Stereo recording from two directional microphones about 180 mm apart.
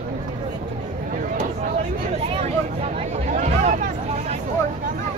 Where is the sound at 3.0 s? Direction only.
45° right (ahead or behind).